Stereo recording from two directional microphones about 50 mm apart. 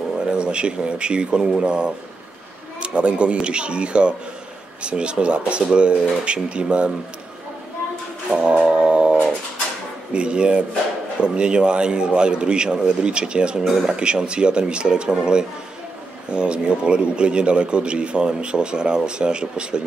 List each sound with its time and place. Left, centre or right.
0.3 s a man's voice: centre
8.3 s brass instrument: centre
10.1 s a man's voice: centre